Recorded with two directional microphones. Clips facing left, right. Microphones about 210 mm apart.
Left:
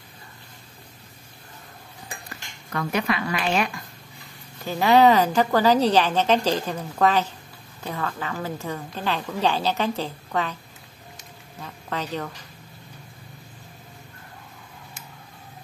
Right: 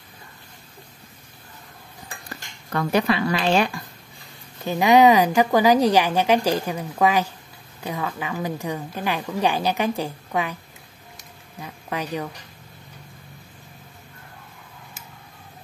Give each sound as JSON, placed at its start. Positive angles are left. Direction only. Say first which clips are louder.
{"t": 2.7, "sound": "a woman's voice", "louder": "right 4 dB", "side_deg": -35}
{"t": 4.6, "sound": "a woman's voice", "louder": "right 2 dB", "side_deg": -15}
{"t": 11.6, "sound": "a woman's voice", "louder": "right 1 dB", "side_deg": -10}